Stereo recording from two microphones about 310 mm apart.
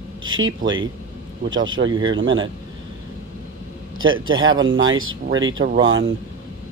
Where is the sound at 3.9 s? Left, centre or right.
Right.